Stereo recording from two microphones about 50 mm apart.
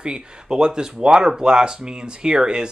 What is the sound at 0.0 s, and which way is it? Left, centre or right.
Speech, centre.